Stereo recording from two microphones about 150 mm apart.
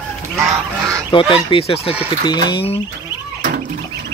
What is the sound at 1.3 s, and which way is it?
Speech, 40° left (ahead or behind).